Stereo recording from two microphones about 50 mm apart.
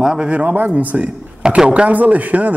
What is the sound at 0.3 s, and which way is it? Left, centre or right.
A man's voice, right.